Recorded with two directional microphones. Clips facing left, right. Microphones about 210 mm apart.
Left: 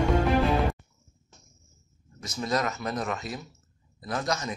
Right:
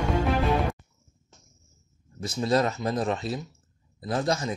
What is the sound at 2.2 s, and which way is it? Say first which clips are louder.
A man's voice: right 5 dB; 30° right (ahead or behind).